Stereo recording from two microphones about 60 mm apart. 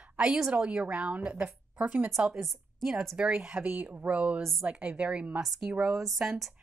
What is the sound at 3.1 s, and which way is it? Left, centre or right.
Speech, centre.